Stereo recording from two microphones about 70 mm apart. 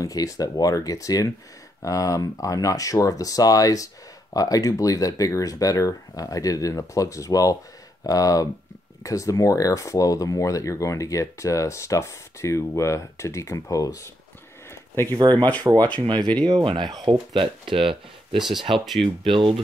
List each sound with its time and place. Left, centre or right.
0.0 s speech: left
15.0 s speech: right
16.0 s speech: right
18.4 s speech: centre